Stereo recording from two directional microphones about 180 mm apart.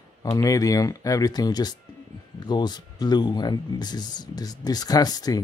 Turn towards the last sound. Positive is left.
turn(degrees=20)  # may be behind; listen again after turning